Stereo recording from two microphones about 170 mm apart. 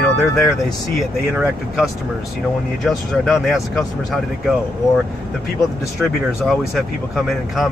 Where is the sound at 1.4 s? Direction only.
5° right (ahead or behind).